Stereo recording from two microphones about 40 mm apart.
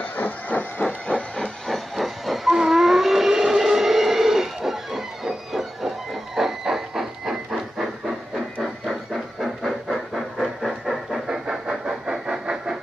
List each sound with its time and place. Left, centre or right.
0.0 s train: left
1.1 s train: left
1.7 s steam whistle: centre
9.1 s train: centre
10.7 s a sound: centre
11.2 s vehicle: centre